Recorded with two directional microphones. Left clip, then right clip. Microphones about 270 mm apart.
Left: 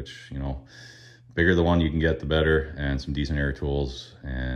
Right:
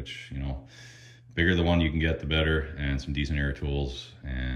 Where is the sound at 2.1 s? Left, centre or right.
Centre.